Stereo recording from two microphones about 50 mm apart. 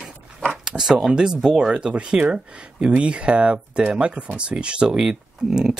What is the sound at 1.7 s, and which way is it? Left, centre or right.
Speech, right.